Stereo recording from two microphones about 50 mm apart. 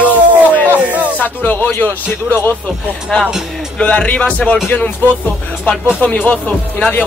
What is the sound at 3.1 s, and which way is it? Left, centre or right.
Speech, left.